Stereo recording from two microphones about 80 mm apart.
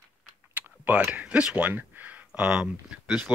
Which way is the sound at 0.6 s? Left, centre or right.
Right.